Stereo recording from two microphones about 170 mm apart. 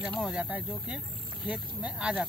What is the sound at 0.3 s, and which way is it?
Speech, 5° right (ahead or behind).